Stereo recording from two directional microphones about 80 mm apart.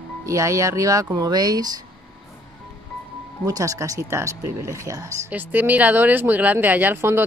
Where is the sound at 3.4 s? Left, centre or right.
Right.